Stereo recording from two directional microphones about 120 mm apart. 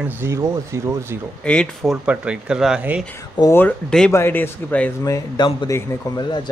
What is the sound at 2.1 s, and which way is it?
Speech, 10° right (ahead or behind).